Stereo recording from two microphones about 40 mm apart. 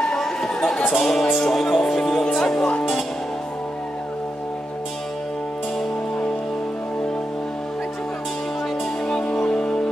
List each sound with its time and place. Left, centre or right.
0.0 s a sound: centre
0.8 s music: centre
9.0 s music: left